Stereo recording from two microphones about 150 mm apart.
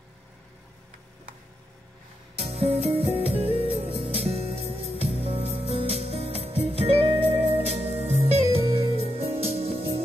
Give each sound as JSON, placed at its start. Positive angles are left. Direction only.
{"t": 2.3, "sound": "music", "side_deg": -40}